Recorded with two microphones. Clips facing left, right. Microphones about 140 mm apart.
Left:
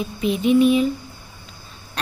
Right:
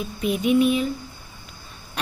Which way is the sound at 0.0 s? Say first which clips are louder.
Left 3 dB; 5° right (ahead or behind).